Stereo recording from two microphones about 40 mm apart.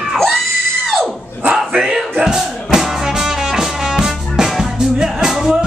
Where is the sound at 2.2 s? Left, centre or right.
Centre.